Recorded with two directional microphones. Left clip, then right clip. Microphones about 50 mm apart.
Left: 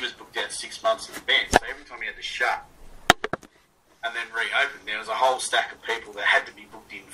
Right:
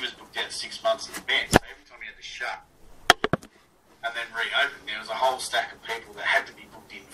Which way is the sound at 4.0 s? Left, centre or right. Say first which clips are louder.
Left 2 dB; left.